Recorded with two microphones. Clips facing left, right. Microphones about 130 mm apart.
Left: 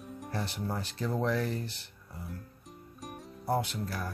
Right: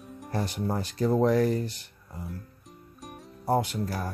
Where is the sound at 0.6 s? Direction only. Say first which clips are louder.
Right 11 dB; 40° right (ahead or behind).